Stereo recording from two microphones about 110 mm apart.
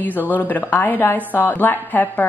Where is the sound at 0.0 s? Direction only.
15° left (ahead or behind).